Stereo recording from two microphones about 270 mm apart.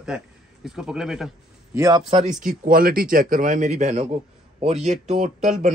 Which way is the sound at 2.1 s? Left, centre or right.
Right.